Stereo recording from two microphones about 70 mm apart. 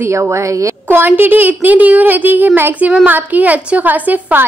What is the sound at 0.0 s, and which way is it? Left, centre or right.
Speech, right.